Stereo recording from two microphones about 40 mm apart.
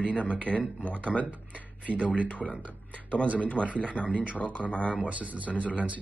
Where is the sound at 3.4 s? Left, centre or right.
Left.